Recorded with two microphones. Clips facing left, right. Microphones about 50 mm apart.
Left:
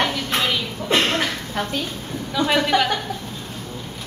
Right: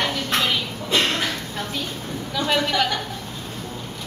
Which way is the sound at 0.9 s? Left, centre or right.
Left.